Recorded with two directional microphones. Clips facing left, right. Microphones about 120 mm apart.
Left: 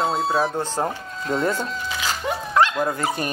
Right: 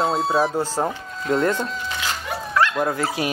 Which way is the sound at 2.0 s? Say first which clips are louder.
Left 5 dB; 25° left (ahead or behind).